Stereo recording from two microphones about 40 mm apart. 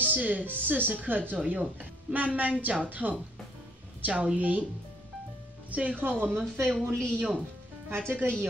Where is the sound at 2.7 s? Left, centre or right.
Right.